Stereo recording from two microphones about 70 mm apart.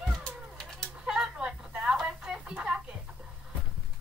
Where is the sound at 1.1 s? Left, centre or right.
Centre.